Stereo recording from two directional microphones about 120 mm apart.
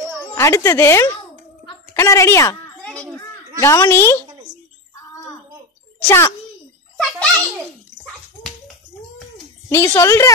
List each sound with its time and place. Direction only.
0.3 s speech: 25° left (ahead or behind)
2.8 s children playing: 10° left (ahead or behind)
3.2 s a sound: 25° left (ahead or behind)
6.0 s speech: 25° left (ahead or behind)
7.0 s bird: centre (ahead or behind)
9.7 s speech: 20° left (ahead or behind)